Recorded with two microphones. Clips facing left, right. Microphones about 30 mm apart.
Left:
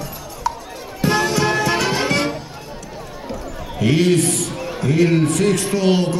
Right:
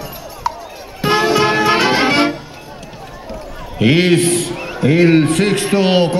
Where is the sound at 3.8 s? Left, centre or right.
Right.